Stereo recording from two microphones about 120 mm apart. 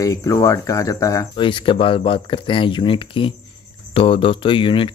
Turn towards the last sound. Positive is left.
turn(degrees=45)  # may be behind; listen again after turning